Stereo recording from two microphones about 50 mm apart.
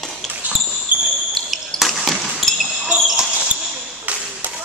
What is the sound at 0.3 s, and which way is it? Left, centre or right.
Basketball bounce, right.